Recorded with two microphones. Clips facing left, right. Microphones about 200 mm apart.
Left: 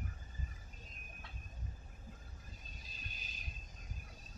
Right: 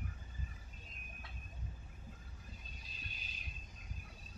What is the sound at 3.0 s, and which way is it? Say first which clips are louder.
Music: even; 45° left (ahead or behind).